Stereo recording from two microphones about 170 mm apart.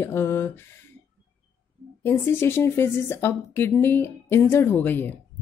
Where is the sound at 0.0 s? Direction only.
15° left (ahead or behind).